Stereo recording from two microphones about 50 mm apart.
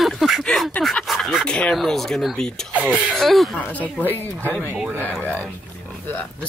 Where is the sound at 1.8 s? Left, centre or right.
Centre.